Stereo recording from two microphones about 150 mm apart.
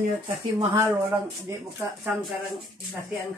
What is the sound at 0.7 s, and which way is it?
Speech, 20° right (ahead or behind).